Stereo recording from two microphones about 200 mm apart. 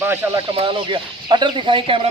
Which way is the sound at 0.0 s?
10° right (ahead or behind).